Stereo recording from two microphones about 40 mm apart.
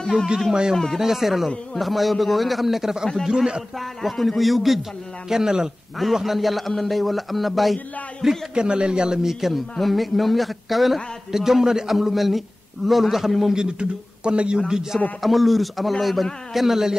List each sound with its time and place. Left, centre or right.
0.5 s a man's voice: centre
0.9 s a man's voice: centre
3.7 s speech: centre
5.3 s a man's voice: centre
6.2 s speech: centre
8.5 s a man's voice: right
9.2 s a man's voice: centre
13.5 s a man's voice: centre
15.2 s a man's voice: centre